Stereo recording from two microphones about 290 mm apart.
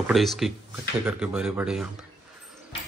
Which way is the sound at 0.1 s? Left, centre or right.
Centre.